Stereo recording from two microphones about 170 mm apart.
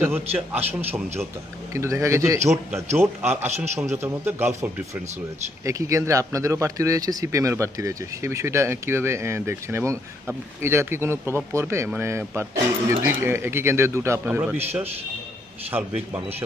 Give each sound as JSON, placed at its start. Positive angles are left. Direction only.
{"t": 0.0, "sound": "speech", "side_deg": -10}
{"t": 5.7, "sound": "speech", "side_deg": -20}
{"t": 15.7, "sound": "speech", "side_deg": -15}